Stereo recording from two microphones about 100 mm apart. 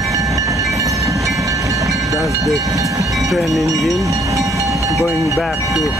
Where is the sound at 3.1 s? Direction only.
Centre (ahead or behind).